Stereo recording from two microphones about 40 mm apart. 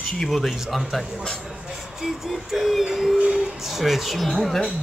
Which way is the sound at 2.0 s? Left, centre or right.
Centre.